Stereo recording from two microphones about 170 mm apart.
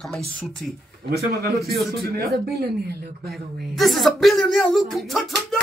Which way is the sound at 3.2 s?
Centre (ahead or behind).